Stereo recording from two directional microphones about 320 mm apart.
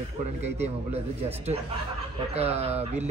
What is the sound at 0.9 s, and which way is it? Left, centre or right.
A man's voice, centre.